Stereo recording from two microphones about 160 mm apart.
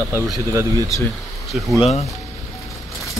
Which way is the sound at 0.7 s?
20° left (ahead or behind).